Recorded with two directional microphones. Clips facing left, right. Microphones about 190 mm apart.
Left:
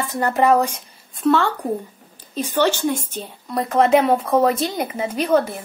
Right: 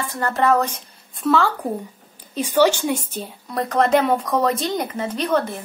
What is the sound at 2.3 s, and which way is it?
Speech, 10° right (ahead or behind).